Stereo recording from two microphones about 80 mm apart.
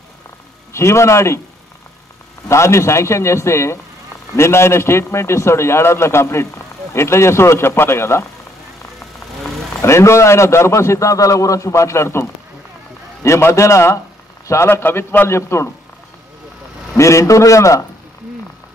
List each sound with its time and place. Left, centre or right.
0.7 s a man's voice: left
2.4 s a man's voice: left
9.8 s a man's voice: left
16.9 s a man's voice: left